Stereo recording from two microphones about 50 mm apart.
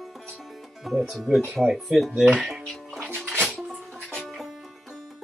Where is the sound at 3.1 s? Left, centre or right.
Centre.